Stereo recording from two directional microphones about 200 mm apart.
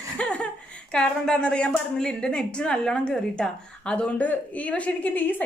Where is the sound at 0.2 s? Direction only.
5° left (ahead or behind).